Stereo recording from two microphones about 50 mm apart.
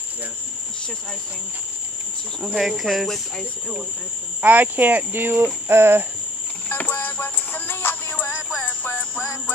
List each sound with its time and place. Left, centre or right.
2.4 s speech: centre
4.4 s speech: right
5.8 s cricket: right
6.7 s music: left